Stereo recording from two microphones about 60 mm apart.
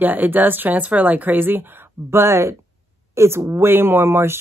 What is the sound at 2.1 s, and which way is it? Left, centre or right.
Speech, right.